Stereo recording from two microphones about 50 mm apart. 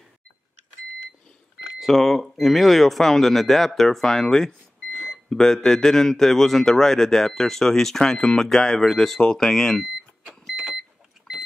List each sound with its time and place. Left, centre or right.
1.8 s speech: centre
9.2 s speech: centre
9.5 s speech: centre
11.3 s vehicle: centre